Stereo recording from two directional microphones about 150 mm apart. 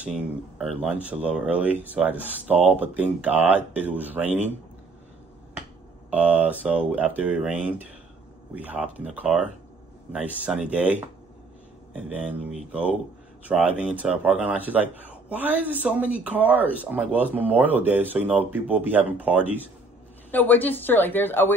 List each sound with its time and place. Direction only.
0.0 s speech: 5° right (ahead or behind)
6.0 s speech: 10° right (ahead or behind)
20.2 s a woman's voice: 10° left (ahead or behind)